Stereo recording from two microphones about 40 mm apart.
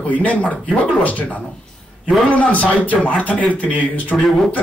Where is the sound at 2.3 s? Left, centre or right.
Left.